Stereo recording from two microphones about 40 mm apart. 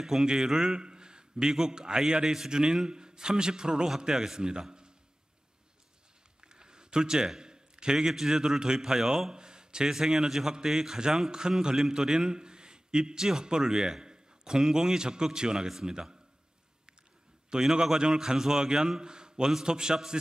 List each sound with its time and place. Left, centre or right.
0.0 s a man's voice: centre
0.7 s a sound: centre
1.5 s a man's voice: centre
6.4 s a sound: right
7.3 s a man's voice: centre
17.5 s a man's voice: centre